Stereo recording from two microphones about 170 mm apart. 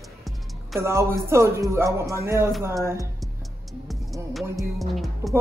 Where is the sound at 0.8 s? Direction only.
15° right (ahead or behind).